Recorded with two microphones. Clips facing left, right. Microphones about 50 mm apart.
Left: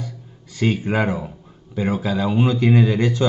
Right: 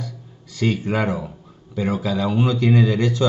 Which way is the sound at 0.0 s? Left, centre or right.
Left.